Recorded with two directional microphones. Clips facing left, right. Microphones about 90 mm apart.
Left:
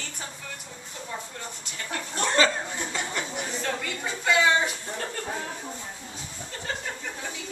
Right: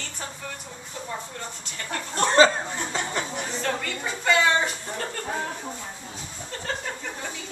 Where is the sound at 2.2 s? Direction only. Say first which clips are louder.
Right 6 dB; 30° right (ahead or behind).